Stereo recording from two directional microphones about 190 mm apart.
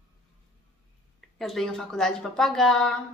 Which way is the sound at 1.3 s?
Centre (ahead or behind).